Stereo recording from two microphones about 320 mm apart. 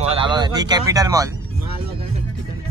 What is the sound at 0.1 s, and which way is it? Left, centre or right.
Speech, centre.